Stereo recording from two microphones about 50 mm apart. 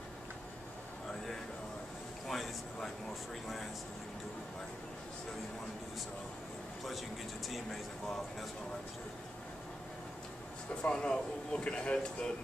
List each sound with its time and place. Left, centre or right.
2.2 s a sound: centre
7.4 s speech: centre
10.7 s speech: centre